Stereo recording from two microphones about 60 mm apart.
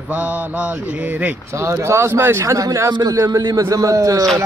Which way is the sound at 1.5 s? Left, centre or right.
Right.